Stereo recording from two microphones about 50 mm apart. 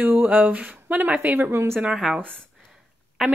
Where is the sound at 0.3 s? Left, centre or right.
Right.